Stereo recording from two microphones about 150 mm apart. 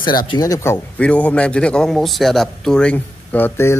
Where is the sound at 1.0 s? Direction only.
10° left (ahead or behind).